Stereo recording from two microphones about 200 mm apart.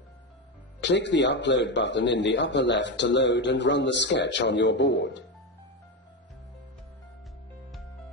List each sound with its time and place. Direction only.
0.8 s a man's voice: 60° left (ahead or behind)